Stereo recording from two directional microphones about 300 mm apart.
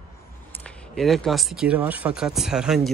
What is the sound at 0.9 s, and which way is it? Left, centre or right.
Speech, centre.